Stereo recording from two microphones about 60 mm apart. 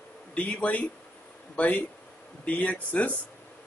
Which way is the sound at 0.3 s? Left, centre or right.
Left.